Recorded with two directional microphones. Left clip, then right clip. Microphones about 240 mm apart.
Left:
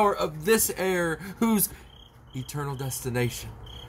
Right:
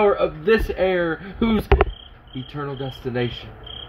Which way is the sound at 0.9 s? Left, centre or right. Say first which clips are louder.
Right 5 dB; left.